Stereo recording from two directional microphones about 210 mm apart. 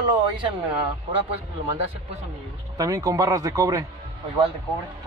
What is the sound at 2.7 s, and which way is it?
A man's voice, 15° right (ahead or behind).